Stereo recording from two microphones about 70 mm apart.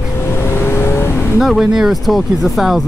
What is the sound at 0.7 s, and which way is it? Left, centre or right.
Vehicle, left.